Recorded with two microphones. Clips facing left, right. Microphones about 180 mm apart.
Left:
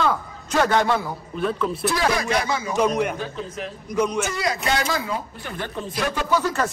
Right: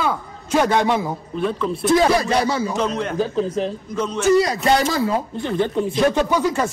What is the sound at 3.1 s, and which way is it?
Speech, 35° right (ahead or behind).